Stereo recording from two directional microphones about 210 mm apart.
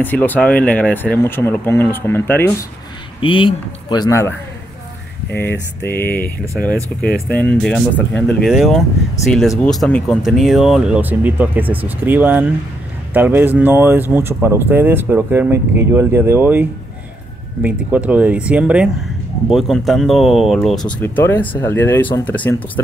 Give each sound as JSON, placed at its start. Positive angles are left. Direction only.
{"t": 0.0, "sound": "speech", "side_deg": 10}
{"t": 3.2, "sound": "speech", "side_deg": 25}
{"t": 5.9, "sound": "speech", "side_deg": 10}
{"t": 7.0, "sound": "speech", "side_deg": 45}
{"t": 7.3, "sound": "speech", "side_deg": 5}